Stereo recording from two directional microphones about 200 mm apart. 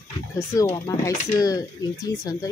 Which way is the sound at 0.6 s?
15° left (ahead or behind).